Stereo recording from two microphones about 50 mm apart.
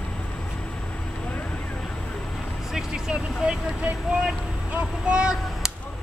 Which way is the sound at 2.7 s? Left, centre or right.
Centre.